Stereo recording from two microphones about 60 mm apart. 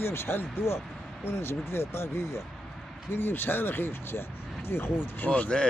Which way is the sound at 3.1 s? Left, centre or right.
Left.